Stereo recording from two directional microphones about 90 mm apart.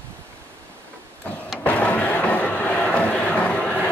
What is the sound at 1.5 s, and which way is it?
Music, 15° left (ahead or behind).